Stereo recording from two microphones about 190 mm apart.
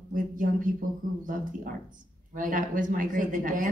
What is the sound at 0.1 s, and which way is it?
Speech, 45° right (ahead or behind).